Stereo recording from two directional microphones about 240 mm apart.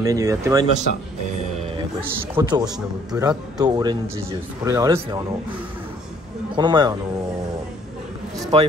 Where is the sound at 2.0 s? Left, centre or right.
Centre.